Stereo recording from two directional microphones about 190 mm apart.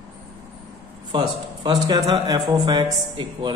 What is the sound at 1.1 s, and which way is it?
Speech, 25° right (ahead or behind).